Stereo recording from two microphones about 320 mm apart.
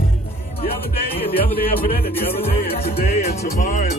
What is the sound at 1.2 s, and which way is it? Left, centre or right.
Music, left.